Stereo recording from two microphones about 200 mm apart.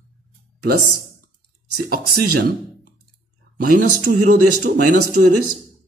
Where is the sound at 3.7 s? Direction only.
45° right (ahead or behind).